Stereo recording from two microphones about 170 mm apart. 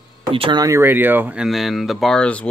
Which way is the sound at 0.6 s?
15° right (ahead or behind).